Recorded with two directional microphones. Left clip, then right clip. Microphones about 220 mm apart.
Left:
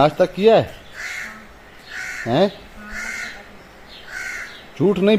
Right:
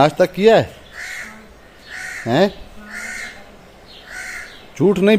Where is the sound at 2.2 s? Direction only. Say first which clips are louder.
Right 2 dB; 10° right (ahead or behind).